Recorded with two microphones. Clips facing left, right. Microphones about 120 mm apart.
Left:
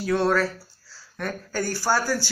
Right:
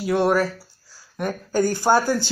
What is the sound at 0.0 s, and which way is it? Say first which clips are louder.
Speech: right 2 dB; 15° right (ahead or behind).